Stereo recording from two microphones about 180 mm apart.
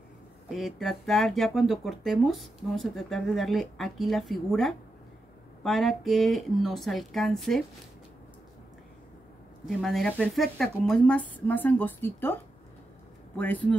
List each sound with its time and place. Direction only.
0.5 s speech: centre (ahead or behind)
9.7 s speech: centre (ahead or behind)
13.4 s speech: 10° left (ahead or behind)